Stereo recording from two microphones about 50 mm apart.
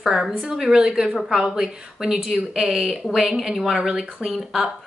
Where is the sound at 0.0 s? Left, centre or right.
Centre.